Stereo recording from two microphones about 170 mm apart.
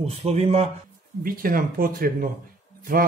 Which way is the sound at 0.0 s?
35° right (ahead or behind).